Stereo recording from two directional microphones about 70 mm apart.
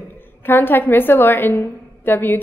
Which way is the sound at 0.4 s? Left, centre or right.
Left.